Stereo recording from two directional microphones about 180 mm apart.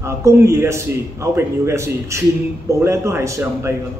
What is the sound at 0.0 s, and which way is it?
A man's voice, 15° right (ahead or behind).